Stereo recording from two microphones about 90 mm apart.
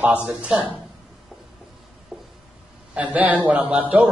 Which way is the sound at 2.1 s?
5° right (ahead or behind).